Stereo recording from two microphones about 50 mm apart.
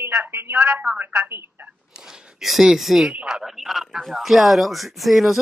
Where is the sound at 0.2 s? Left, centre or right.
Right.